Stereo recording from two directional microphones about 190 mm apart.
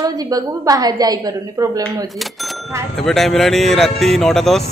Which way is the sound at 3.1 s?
Centre (ahead or behind).